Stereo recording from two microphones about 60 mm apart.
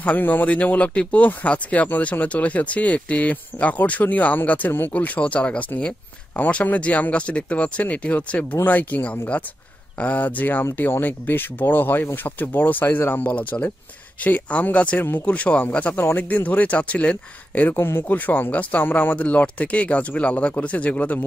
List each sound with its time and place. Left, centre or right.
0.0 s speech: left
17.7 s speech: left
18.0 s speech: left